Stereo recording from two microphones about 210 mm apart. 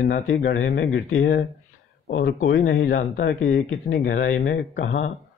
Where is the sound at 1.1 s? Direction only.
45° left (ahead or behind).